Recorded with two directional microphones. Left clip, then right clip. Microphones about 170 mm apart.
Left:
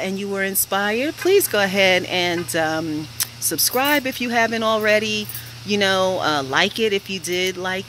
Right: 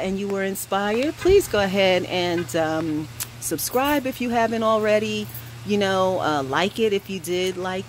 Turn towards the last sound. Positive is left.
turn(degrees=-5)  # may be behind; listen again after turning